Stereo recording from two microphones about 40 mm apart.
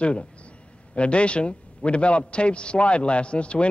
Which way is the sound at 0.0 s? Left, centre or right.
Left.